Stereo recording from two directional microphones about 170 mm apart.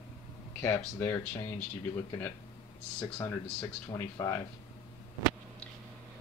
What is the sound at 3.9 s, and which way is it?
Speech, 20° left (ahead or behind).